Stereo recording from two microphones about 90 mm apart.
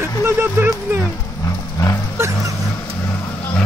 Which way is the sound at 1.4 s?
40° left (ahead or behind).